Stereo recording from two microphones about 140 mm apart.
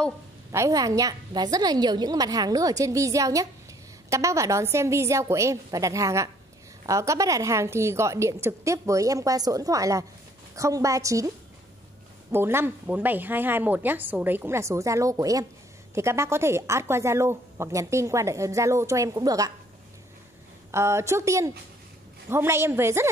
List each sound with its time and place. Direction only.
0.5 s speech: 25° right (ahead or behind)
20.7 s speech: 20° right (ahead or behind)